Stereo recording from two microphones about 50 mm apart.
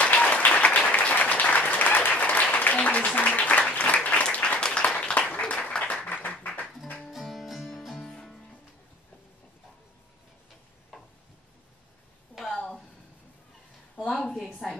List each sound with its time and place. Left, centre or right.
0.0 s applause: left
6.4 s music: left
7.1 s music: centre
7.7 s music: centre
14.0 s a sound: centre